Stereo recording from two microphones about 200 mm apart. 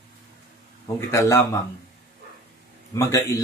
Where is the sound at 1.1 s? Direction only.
15° left (ahead or behind).